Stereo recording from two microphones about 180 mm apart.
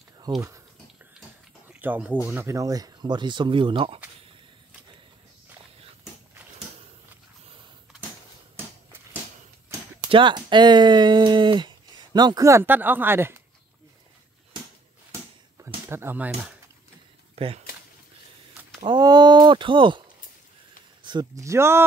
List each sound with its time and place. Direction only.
1.7 s a sound: 10° right (ahead or behind)
2.2 s speech: 15° right (ahead or behind); by 4.0 s 30° right (ahead or behind)
10.1 s speech: 25° right (ahead or behind)
15.9 s speech: 10° right (ahead or behind)
17.4 s speech: 35° right (ahead or behind)
18.8 s speech: 25° right (ahead or behind)